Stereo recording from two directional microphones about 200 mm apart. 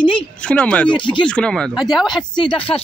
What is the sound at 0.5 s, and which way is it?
Speech, 5° left (ahead or behind).